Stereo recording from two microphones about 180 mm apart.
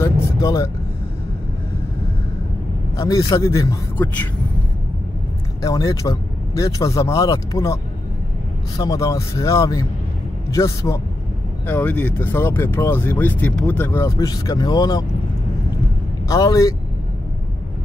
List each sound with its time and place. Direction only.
0.0 s speech: 20° left (ahead or behind)
3.0 s speech: 20° left (ahead or behind)
5.6 s speech: 20° left (ahead or behind)
16.3 s speech: 20° left (ahead or behind)